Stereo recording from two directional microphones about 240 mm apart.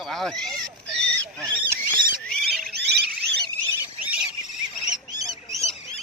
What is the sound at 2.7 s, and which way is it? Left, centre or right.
Alarm, right.